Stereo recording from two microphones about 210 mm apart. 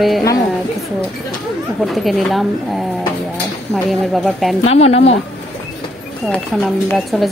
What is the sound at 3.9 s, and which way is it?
Speech, centre (ahead or behind).